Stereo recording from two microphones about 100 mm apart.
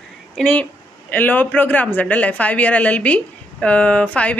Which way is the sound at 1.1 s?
20° left (ahead or behind).